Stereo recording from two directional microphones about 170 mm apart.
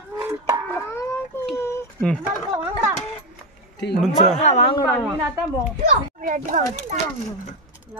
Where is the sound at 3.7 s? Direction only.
80° left.